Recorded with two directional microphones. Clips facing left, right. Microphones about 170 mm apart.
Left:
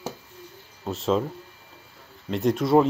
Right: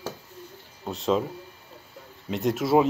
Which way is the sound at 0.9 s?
Centre (ahead or behind).